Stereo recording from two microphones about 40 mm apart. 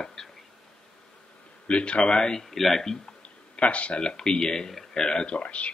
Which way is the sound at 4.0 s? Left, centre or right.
Left.